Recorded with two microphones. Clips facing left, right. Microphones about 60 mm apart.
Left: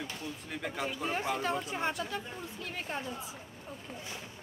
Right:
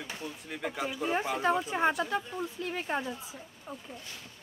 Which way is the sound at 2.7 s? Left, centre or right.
Right.